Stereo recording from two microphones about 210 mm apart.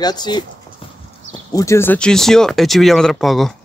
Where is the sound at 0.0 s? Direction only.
20° left (ahead or behind).